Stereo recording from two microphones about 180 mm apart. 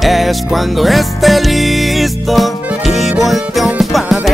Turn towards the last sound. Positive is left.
turn(degrees=0)  # may be behind; listen again after turning